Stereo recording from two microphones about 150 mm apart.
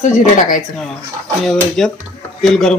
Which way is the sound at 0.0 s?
55° left (ahead or behind).